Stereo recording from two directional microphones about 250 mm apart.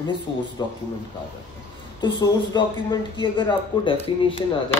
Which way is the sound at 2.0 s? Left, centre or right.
Centre.